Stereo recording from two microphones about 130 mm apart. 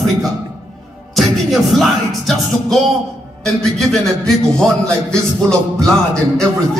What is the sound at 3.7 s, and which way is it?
Music, 5° left (ahead or behind).